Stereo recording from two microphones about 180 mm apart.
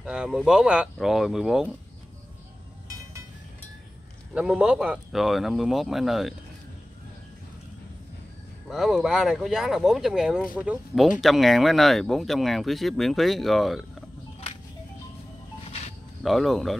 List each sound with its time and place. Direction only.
0.0 s speech: 5° right (ahead or behind)
4.3 s speech: 5° right (ahead or behind)
8.6 s speech: centre (ahead or behind)
15.6 s music: 35° left (ahead or behind)
16.2 s speech: centre (ahead or behind)